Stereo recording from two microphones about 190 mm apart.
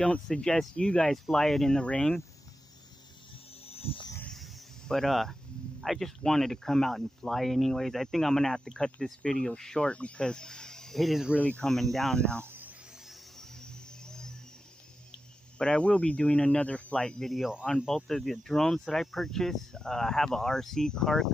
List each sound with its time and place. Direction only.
0.0 s speech: 5° left (ahead or behind)
3.7 s wild animals: 30° left (ahead or behind)
4.2 s a sound: 5° left (ahead or behind)
5.8 s speech: centre (ahead or behind)
15.6 s speech: 5° left (ahead or behind)